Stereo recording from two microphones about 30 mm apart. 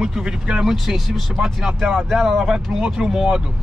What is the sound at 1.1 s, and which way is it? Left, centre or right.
Speech, centre.